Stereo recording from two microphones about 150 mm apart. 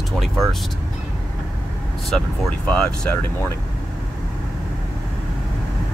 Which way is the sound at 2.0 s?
Centre (ahead or behind).